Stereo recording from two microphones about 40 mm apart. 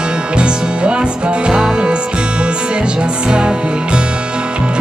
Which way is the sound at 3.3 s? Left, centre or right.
Right.